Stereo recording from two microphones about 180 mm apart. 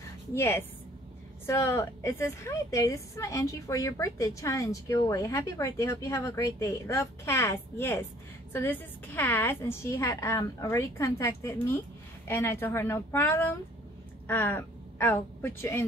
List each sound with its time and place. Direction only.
0.3 s a woman's voice: 15° left (ahead or behind)